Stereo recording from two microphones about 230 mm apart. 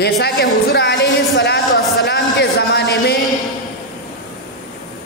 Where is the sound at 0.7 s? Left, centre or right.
Left.